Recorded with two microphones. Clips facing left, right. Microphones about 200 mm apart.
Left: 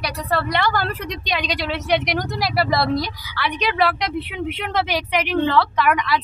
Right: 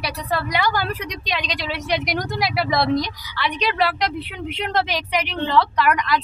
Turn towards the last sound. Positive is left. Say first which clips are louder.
# even
turn(degrees=0)  # may be behind; listen again after turning